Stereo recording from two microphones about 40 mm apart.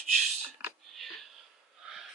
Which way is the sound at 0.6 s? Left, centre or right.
Right.